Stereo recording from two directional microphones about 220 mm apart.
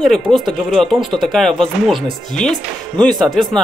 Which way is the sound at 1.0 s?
20° right (ahead or behind).